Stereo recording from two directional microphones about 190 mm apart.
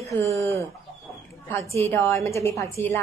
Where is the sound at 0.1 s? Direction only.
15° left (ahead or behind).